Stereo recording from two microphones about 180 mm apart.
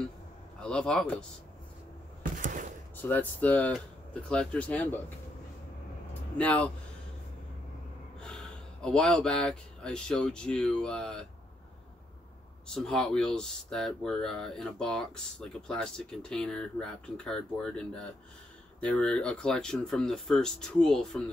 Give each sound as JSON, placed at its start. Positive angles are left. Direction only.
{"t": 0.6, "sound": "speech", "side_deg": 5}
{"t": 2.4, "sound": "a sound", "side_deg": -45}
{"t": 3.0, "sound": "speech", "side_deg": 10}
{"t": 6.3, "sound": "speech", "side_deg": 5}
{"t": 8.2, "sound": "speech", "side_deg": 5}
{"t": 12.6, "sound": "speech", "side_deg": 5}